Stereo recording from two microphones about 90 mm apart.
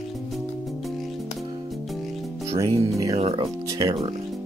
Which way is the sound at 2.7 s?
40° right (ahead or behind).